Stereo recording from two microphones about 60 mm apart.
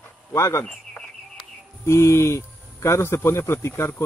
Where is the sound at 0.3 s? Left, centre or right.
Left.